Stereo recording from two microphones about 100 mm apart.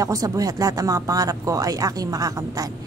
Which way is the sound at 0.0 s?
35° right (ahead or behind).